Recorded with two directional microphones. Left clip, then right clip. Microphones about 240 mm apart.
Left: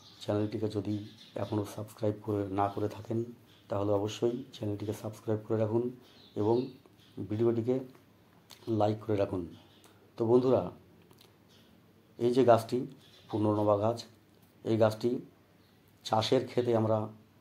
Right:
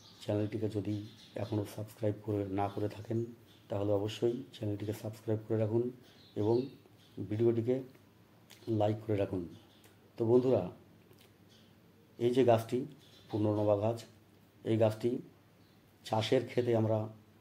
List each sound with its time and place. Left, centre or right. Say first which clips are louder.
0.2 s speech: left 3 dB; centre
7.2 s speech: left 1 dB; centre
12.4 s speech: left 4 dB; centre